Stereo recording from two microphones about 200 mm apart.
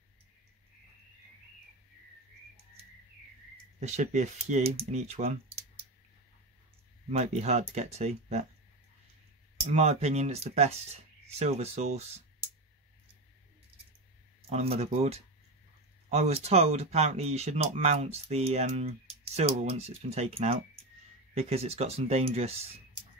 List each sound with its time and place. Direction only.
3.8 s speech: 35° right (ahead or behind)
7.1 s speech: 35° right (ahead or behind)
9.7 s speech: 30° right (ahead or behind)
14.5 s speech: 30° right (ahead or behind)